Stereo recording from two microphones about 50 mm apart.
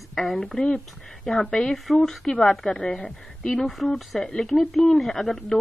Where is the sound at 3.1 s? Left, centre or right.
Centre.